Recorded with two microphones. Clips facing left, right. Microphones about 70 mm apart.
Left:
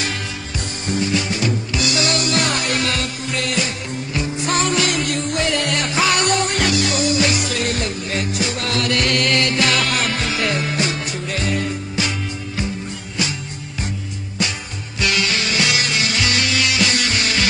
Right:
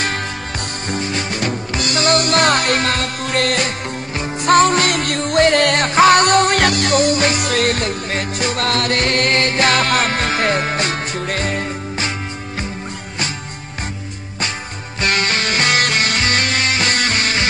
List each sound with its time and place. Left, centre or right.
0.8 s music: right
15.0 s music: right